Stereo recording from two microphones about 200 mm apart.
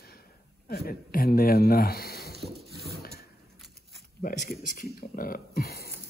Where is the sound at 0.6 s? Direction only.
45° left (ahead or behind).